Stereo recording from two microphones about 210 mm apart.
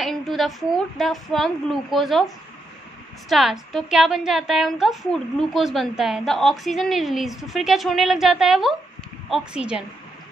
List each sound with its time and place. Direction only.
0.0 s a woman's voice: centre (ahead or behind)
3.3 s a woman's voice: centre (ahead or behind)